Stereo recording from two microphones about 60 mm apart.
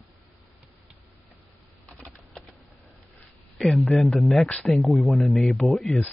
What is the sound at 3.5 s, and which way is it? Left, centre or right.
Speech, centre.